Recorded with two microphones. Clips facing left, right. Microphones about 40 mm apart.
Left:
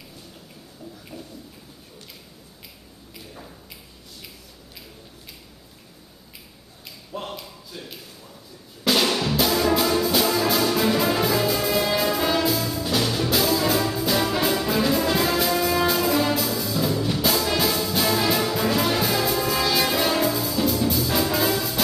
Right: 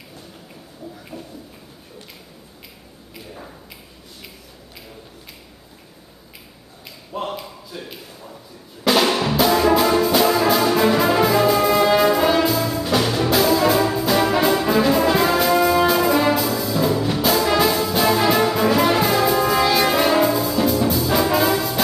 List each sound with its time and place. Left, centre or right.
1.1 s a sound: centre
7.1 s a sound: centre
8.8 s drum: centre
9.4 s brass instrument: centre
12.6 s music: centre
15.0 s brass instrument: centre
16.3 s music: centre
17.6 s brass instrument: centre
18.1 s music: centre
19.7 s brass instrument: centre